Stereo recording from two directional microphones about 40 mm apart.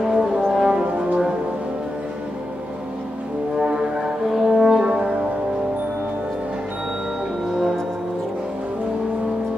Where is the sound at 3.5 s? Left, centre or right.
Centre.